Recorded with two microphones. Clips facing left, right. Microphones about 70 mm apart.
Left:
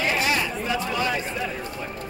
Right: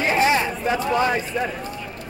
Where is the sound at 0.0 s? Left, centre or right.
Right.